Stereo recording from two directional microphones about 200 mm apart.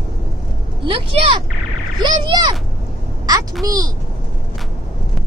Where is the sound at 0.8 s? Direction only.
25° right (ahead or behind).